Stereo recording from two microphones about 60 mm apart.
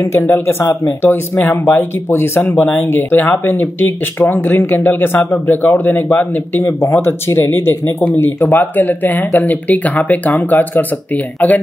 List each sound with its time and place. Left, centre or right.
0.0 s speech: left
1.4 s speech: left
2.5 s speech: left
2.8 s speech: left
6.6 s speech: left
8.4 s speech: left